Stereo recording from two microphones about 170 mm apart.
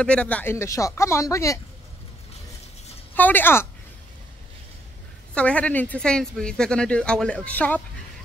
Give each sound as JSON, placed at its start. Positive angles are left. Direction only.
{"t": 0.0, "sound": "speech", "side_deg": 5}
{"t": 3.2, "sound": "speech", "side_deg": 10}
{"t": 5.3, "sound": "speech", "side_deg": 5}